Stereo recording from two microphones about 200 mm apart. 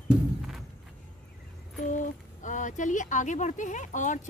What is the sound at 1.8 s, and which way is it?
Speech, 40° left (ahead or behind).